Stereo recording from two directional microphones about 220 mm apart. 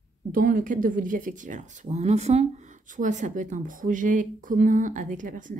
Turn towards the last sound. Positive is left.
turn(degrees=-35)  # may be behind; listen again after turning